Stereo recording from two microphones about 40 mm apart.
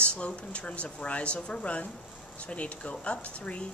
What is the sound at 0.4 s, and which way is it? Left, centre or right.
Speech, left.